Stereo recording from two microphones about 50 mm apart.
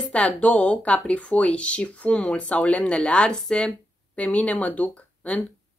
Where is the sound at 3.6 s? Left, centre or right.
Left.